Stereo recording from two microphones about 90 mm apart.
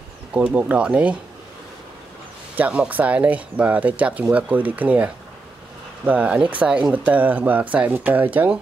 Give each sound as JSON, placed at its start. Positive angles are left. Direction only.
{"t": 0.3, "sound": "speech", "side_deg": -15}
{"t": 2.5, "sound": "speech", "side_deg": -15}